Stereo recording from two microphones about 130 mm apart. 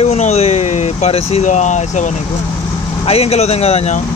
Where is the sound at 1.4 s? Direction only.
65° left (ahead or behind).